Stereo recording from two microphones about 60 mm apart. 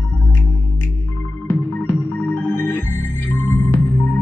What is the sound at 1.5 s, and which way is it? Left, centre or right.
Music, left.